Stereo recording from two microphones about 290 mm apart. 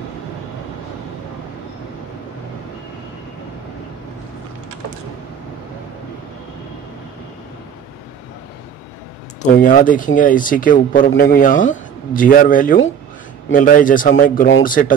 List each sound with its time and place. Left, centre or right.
9.4 s speech: left